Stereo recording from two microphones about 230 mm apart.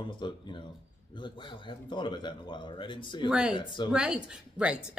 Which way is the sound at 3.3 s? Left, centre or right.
Centre.